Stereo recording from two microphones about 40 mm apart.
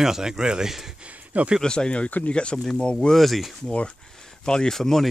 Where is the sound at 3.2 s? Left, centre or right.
Centre.